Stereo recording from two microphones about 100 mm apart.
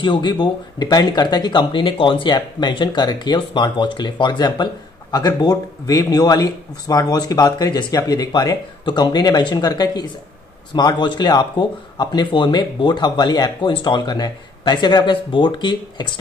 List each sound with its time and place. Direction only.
0.0 s speech: 50° left (ahead or behind)